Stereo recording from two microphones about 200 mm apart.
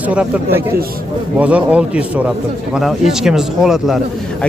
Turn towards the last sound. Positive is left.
turn(degrees=0)  # may be behind; listen again after turning